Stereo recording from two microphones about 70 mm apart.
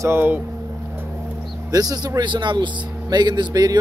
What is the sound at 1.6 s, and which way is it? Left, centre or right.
Speech, right.